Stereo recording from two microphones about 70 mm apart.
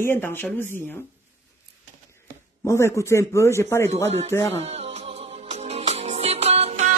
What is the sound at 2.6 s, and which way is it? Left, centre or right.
Speech, left.